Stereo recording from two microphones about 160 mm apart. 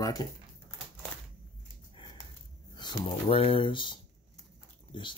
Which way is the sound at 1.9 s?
30° left (ahead or behind).